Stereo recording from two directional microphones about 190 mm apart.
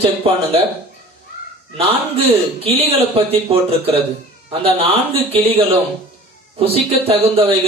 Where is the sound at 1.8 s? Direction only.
30° right (ahead or behind).